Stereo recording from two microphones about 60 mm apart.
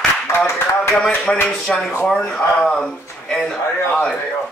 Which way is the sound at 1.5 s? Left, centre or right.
Centre.